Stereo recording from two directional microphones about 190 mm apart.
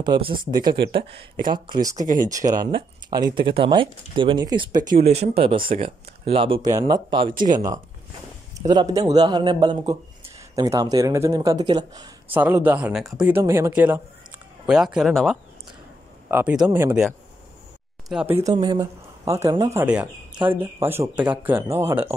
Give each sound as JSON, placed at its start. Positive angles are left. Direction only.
{"t": 0.0, "sound": "speech", "side_deg": -25}
{"t": 5.0, "sound": "speech", "side_deg": -35}
{"t": 12.3, "sound": "speech", "side_deg": -10}
{"t": 13.4, "sound": "speech", "side_deg": -15}
{"t": 16.3, "sound": "speech", "side_deg": -10}
{"t": 18.6, "sound": "speech", "side_deg": -20}